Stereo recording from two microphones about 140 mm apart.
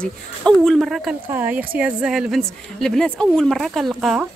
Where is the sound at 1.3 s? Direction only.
15° right (ahead or behind).